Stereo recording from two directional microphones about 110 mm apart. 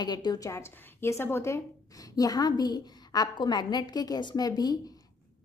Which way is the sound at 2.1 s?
35° left (ahead or behind).